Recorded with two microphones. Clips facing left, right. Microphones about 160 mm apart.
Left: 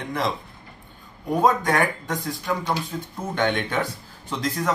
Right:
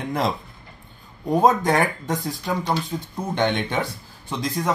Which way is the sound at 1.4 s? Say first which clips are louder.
Right 1 dB; 25° right (ahead or behind).